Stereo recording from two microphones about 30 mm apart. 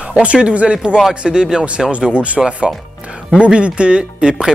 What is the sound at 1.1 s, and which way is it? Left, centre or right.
Speech, right.